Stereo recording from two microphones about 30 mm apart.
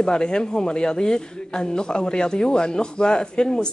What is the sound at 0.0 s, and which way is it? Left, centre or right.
Speech, left.